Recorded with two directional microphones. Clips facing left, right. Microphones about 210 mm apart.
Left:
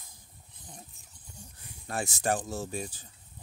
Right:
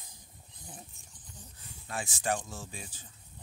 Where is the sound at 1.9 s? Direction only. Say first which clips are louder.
Left 3 dB; 40° left (ahead or behind).